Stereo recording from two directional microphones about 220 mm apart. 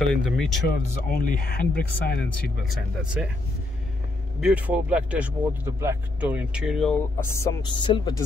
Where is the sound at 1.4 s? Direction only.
45° left (ahead or behind).